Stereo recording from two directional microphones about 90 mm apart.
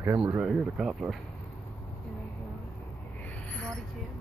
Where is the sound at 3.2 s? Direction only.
15° left (ahead or behind).